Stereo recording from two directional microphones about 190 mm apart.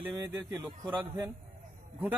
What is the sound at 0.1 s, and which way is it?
A man's voice, 20° right (ahead or behind).